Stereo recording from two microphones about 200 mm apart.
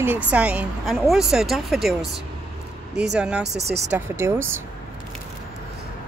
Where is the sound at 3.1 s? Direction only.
5° right (ahead or behind).